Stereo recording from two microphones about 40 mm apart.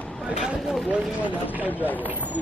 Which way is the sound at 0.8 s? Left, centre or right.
Right.